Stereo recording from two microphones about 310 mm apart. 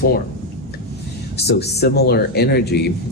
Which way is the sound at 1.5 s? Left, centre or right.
Left.